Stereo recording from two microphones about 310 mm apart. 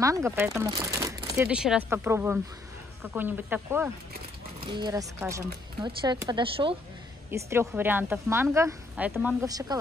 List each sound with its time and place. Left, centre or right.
0.0 s speech: centre